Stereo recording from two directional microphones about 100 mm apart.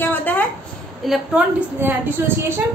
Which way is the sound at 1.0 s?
5° right (ahead or behind).